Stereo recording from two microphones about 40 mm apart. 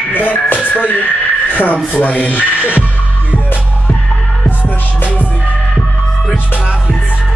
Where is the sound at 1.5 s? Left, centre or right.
Left.